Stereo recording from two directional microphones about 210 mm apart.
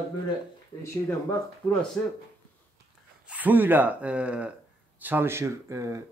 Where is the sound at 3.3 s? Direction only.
10° right (ahead or behind).